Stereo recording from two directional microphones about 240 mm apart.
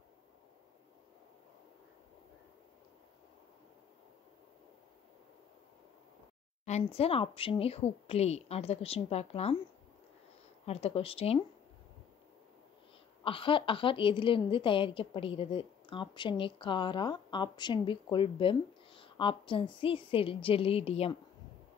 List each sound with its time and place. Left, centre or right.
6.6 s a woman's voice: left
10.6 s a woman's voice: left
13.2 s a woman's voice: left